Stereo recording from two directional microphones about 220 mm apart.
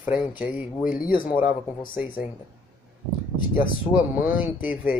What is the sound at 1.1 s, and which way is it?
Speech, 40° left (ahead or behind).